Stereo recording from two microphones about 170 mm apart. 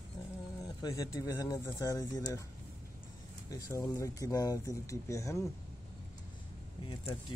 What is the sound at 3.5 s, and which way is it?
Speech, 20° left (ahead or behind).